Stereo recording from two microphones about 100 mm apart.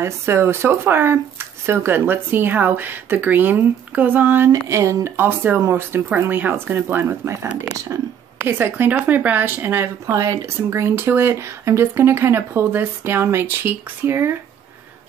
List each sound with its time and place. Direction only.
0.0 s speech: 25° right (ahead or behind)
4.5 s speech: 30° right (ahead or behind)